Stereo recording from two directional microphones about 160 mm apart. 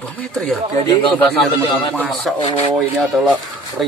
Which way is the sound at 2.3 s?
Centre (ahead or behind).